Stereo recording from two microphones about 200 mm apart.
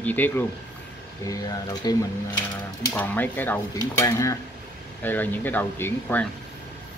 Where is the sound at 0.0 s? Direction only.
10° left (ahead or behind).